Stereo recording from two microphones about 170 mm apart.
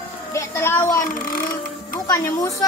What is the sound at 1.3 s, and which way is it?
Burping, 55° left (ahead or behind).